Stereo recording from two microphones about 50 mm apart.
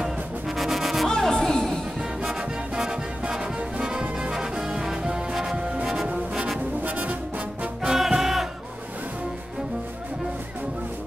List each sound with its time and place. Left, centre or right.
0.6 s music: centre
1.0 s music: centre
2.0 s music: centre
6.8 s music: right
7.9 s music: centre